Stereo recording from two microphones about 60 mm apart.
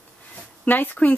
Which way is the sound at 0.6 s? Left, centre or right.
Left.